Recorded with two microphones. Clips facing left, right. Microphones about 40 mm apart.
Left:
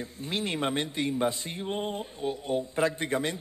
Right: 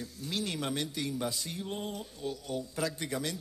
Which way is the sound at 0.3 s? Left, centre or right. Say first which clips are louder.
Left 5 dB; left.